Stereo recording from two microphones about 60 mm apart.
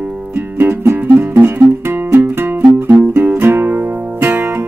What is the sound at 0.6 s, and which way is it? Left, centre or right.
Music, right.